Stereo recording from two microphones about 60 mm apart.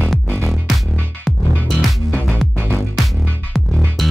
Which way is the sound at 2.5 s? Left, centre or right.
Right.